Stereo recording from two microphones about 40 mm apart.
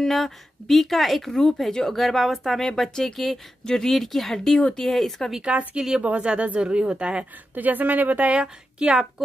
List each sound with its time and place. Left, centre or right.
0.0 s speech: centre
2.6 s speech: centre
5.4 s speech: right
5.8 s speech: centre
6.2 s speech: right
7.5 s speech: right
8.4 s speech: right